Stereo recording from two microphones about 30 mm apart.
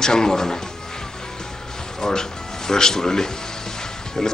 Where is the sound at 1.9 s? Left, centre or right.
Centre.